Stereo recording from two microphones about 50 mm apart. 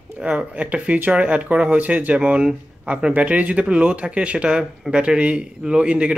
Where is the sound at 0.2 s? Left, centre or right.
Right.